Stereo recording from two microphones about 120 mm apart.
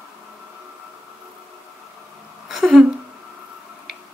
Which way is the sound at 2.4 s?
5° right (ahead or behind).